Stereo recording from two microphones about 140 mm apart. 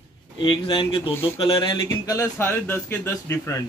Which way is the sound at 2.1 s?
15° left (ahead or behind).